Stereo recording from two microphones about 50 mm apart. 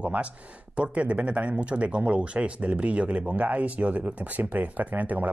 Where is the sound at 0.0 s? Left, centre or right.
Right.